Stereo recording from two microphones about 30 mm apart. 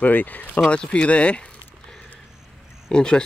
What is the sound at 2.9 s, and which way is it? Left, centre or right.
Speech, left.